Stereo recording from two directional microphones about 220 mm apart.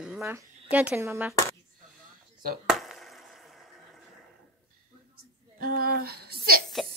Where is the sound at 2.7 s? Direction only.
Centre (ahead or behind).